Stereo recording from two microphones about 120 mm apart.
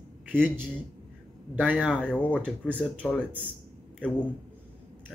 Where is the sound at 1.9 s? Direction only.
10° left (ahead or behind).